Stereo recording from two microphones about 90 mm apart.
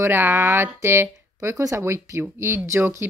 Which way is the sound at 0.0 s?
25° right (ahead or behind).